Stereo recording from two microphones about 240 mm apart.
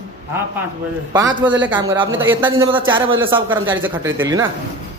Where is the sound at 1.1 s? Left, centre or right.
Centre.